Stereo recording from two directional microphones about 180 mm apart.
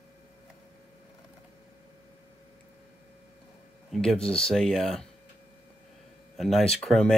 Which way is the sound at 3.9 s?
Centre (ahead or behind).